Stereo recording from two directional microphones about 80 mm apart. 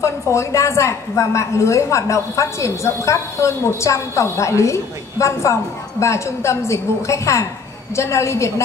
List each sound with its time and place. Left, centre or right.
0.0 s a woman's voice: left